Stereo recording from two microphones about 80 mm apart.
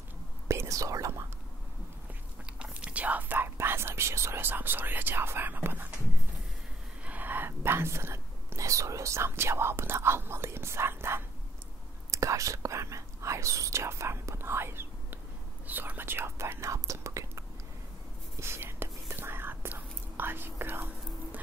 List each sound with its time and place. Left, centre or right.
0.5 s whispering: right
2.6 s whispering: centre
7.1 s whispering: right
12.1 s whispering: right